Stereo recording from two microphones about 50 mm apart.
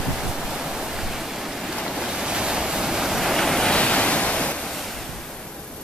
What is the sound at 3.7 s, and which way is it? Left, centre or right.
Ocean, left.